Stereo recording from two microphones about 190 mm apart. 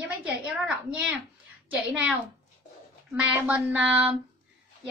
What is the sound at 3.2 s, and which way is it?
Speech, 5° right (ahead or behind).